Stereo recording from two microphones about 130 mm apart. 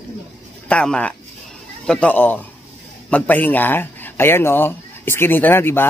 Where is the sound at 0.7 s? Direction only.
10° left (ahead or behind).